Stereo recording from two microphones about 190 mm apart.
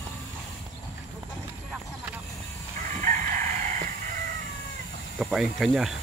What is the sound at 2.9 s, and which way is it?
Chicken, 40° right (ahead or behind).